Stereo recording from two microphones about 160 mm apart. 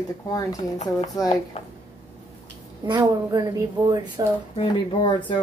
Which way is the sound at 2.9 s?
25° right (ahead or behind).